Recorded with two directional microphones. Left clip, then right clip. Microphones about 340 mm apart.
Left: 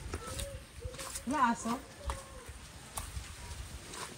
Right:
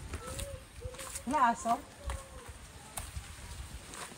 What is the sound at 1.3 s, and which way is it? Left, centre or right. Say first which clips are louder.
Speech: right 2 dB; centre.